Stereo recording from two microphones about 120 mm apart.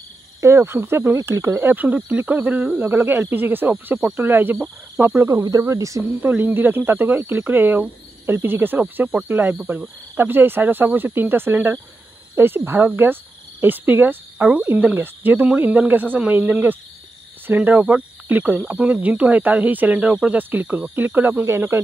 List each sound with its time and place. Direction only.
0.4 s speech: 25° right (ahead or behind)